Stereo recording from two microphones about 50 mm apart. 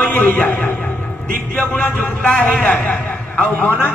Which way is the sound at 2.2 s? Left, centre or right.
Left.